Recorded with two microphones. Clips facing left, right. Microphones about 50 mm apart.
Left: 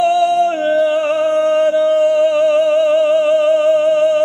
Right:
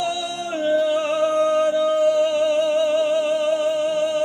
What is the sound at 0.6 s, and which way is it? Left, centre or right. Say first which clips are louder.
Music: left 5 dB; left.